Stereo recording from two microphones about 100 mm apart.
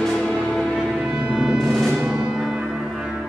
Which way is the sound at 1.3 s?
10° right (ahead or behind).